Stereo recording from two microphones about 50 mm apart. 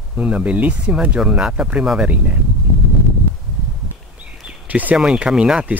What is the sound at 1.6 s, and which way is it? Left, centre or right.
Speech, centre.